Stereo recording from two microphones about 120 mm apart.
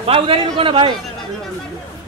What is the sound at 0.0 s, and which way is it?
Speech, 50° right (ahead or behind).